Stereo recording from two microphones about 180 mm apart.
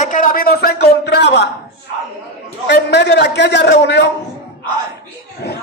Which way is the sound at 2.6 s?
70° left (ahead or behind).